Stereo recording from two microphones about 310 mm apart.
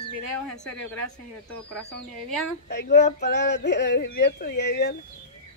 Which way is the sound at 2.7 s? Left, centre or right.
Left.